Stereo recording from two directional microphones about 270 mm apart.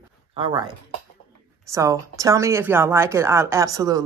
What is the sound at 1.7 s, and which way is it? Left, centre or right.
Speech, centre.